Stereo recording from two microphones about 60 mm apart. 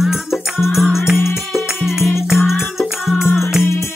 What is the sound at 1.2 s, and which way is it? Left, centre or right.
Music, left.